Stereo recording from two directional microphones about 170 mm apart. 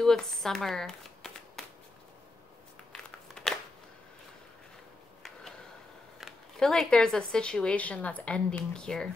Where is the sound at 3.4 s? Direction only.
5° left (ahead or behind).